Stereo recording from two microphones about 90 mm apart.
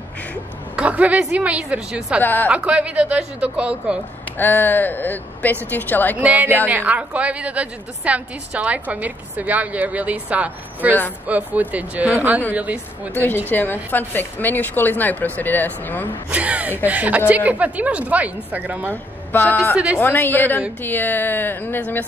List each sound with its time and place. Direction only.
0.7 s a woman's voice: 15° right (ahead or behind)
2.2 s a woman's voice: 20° left (ahead or behind)
2.5 s a woman's voice: 15° right (ahead or behind)
4.4 s a woman's voice: 20° left (ahead or behind)
6.1 s a woman's voice: 15° right (ahead or behind)
13.1 s a woman's voice: 25° left (ahead or behind)
16.3 s a woman's voice: 15° right (ahead or behind)
19.3 s a woman's voice: 20° left (ahead or behind)